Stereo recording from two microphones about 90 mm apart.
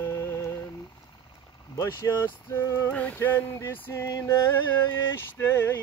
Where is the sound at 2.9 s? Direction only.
20° left (ahead or behind).